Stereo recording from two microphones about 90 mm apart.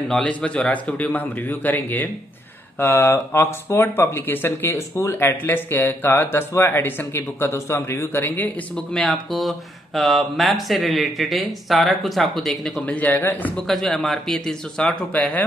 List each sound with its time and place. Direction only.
0.1 s a man's voice: 10° left (ahead or behind)
8.7 s speech: 5° left (ahead or behind)
12.8 s a man's voice: 15° left (ahead or behind)
13.6 s speech: 5° left (ahead or behind)